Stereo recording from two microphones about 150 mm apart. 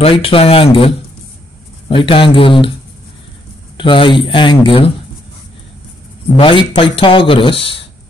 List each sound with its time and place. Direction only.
0.0 s speech: 35° left (ahead or behind)
3.7 s speech: 35° left (ahead or behind)
6.3 s speech: 35° left (ahead or behind)